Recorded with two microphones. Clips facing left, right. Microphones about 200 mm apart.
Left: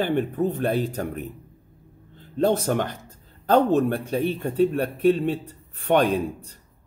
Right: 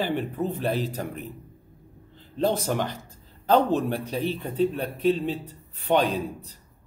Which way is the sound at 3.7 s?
50° left (ahead or behind).